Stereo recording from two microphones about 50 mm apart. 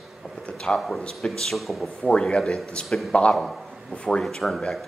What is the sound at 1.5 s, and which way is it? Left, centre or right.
Speech, centre.